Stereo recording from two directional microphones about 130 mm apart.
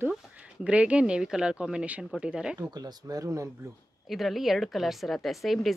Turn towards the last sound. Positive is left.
turn(degrees=0)  # may be behind; listen again after turning